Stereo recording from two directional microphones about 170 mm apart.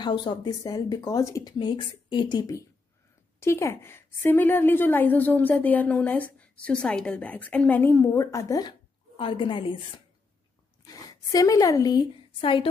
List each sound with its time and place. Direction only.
0.0 s a woman's voice: 25° left (ahead or behind)